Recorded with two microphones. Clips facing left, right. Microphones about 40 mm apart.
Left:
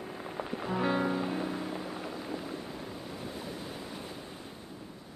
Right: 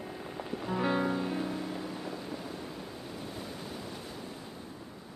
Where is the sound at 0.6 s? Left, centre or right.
Centre.